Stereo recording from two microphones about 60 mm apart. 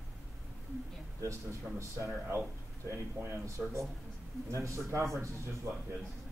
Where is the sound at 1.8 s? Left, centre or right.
Right.